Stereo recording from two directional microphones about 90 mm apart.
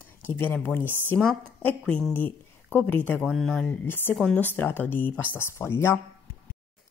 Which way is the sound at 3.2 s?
5° left (ahead or behind).